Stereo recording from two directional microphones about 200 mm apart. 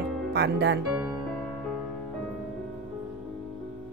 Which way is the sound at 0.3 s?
55° right (ahead or behind).